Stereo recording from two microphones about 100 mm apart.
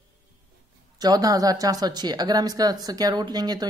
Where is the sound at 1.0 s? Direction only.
40° right (ahead or behind).